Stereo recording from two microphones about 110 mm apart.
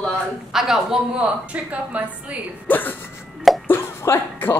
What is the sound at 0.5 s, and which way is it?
A woman's voice, 5° right (ahead or behind).